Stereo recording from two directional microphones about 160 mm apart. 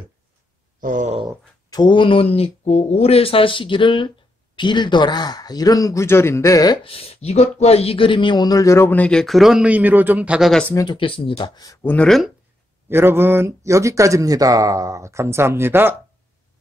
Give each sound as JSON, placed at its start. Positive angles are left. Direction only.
{"t": 0.7, "sound": "speech", "side_deg": -55}
{"t": 1.7, "sound": "a man's voice", "side_deg": 30}
{"t": 10.6, "sound": "speech", "side_deg": 15}
{"t": 10.9, "sound": "a man's voice", "side_deg": 35}
{"t": 11.8, "sound": "speech", "side_deg": 10}
{"t": 12.9, "sound": "speech", "side_deg": -15}